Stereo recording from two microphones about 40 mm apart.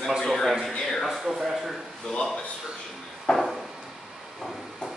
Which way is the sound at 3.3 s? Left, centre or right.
Left.